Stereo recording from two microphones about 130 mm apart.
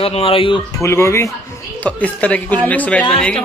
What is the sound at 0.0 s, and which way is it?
Speech, 45° left (ahead or behind).